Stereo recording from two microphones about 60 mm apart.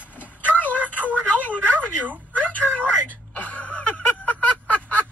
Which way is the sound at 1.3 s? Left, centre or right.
Left.